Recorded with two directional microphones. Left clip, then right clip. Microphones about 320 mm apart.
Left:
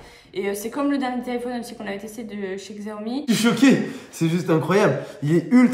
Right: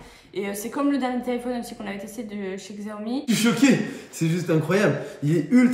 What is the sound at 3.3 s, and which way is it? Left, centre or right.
Speech, centre.